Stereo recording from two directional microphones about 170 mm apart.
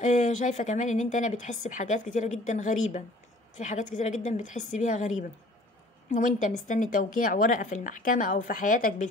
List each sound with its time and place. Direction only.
0.0 s a woman's voice: 45° left (ahead or behind)